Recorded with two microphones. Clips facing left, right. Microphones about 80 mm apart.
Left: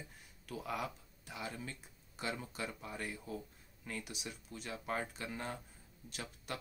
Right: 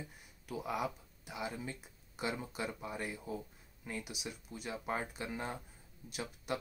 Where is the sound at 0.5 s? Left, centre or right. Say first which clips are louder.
Right 3 dB; centre.